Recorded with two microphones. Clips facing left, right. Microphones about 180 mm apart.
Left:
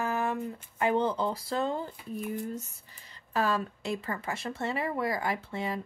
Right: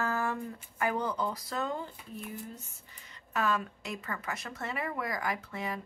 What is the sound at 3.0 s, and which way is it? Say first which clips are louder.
A woman's voice: left 2 dB; 30° left (ahead or behind).